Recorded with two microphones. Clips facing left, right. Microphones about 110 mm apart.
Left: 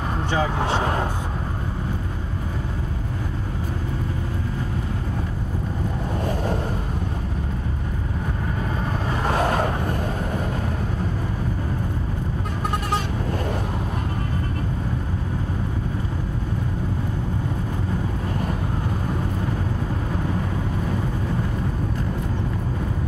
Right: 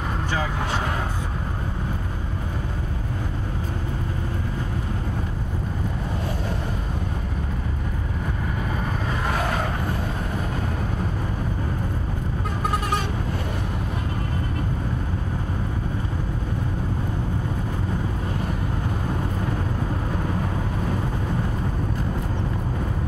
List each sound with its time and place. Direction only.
0.3 s speech: 20° left (ahead or behind)
9.3 s vehicle: 35° left (ahead or behind)